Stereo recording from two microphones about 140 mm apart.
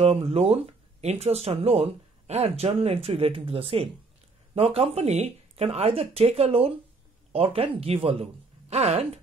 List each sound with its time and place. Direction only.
0.0 s speech: 45° right (ahead or behind)